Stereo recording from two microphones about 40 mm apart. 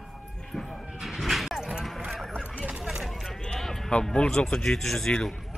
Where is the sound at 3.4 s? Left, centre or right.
Centre.